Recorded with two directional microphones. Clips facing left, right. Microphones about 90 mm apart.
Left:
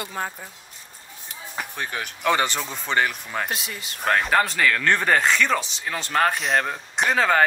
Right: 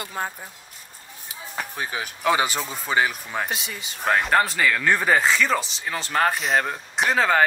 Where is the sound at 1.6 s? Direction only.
5° right (ahead or behind).